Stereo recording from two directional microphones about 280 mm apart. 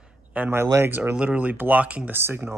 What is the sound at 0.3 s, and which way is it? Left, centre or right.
Speech, centre.